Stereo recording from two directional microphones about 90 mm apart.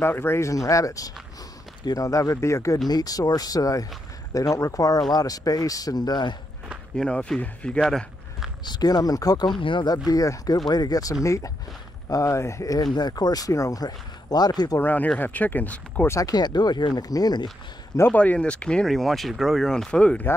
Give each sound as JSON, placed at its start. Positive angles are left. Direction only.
{"t": 0.0, "sound": "speech", "side_deg": 25}
{"t": 7.0, "sound": "speech", "side_deg": 10}
{"t": 8.6, "sound": "speech", "side_deg": 50}
{"t": 12.7, "sound": "speech", "side_deg": 50}
{"t": 14.8, "sound": "speech", "side_deg": 20}
{"t": 16.1, "sound": "speech", "side_deg": 40}
{"t": 18.1, "sound": "speech", "side_deg": 15}